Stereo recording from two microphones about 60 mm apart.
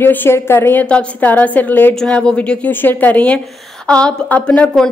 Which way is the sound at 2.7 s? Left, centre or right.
Left.